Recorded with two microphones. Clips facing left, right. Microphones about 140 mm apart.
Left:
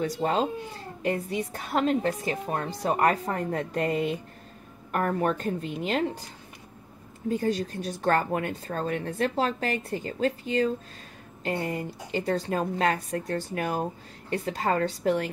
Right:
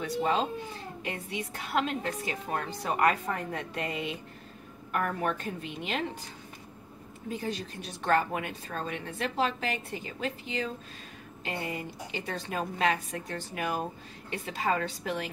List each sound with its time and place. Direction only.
0.0 s a woman's voice: 40° left (ahead or behind)
7.2 s a woman's voice: 40° left (ahead or behind)